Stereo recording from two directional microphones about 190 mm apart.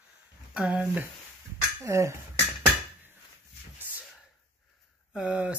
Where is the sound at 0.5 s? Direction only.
5° right (ahead or behind).